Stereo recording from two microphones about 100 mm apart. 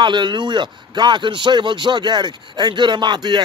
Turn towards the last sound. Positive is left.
turn(degrees=-45)  # may be behind; listen again after turning